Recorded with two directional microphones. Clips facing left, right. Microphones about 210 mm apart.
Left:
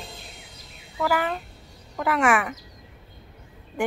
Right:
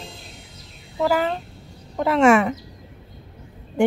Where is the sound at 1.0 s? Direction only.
25° right (ahead or behind).